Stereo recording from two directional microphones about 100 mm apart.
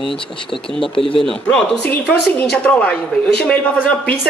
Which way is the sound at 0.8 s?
65° left (ahead or behind).